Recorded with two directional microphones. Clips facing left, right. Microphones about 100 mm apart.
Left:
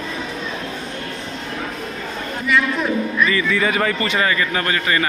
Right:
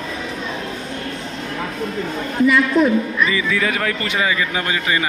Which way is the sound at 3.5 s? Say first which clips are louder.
Left 1 dB; centre (ahead or behind).